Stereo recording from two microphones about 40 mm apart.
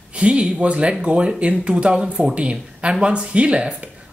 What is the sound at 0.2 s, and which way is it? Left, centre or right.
Speech, right.